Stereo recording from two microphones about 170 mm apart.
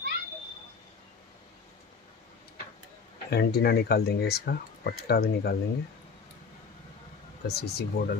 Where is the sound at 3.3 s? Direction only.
70° left (ahead or behind).